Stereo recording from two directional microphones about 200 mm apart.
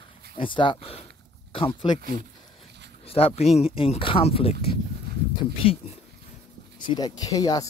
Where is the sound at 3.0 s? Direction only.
30° left (ahead or behind).